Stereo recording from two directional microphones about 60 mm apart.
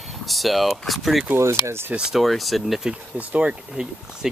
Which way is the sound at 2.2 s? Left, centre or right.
Centre.